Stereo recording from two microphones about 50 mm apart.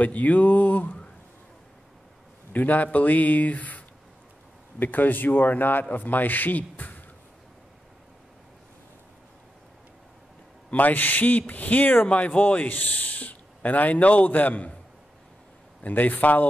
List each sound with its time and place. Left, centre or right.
0.0 s speech: left
2.5 s speech: left
10.7 s speech: left
12.1 s speech: left
15.8 s speech: left